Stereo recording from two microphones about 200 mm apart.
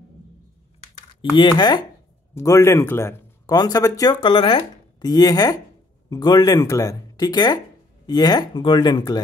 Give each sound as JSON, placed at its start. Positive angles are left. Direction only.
{"t": 1.3, "sound": "a man's voice", "side_deg": 20}